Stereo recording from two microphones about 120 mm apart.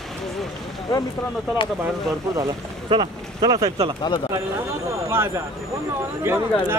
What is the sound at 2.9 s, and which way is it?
Speech, 40° right (ahead or behind).